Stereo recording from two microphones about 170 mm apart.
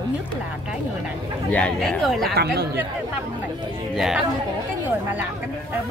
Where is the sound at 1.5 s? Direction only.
5° left (ahead or behind).